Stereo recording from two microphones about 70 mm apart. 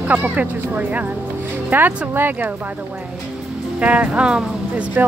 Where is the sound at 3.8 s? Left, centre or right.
Centre.